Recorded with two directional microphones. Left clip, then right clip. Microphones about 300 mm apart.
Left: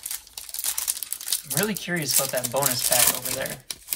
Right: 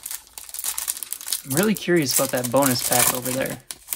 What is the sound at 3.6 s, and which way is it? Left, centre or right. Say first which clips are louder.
Crumpling: left 2 dB; centre.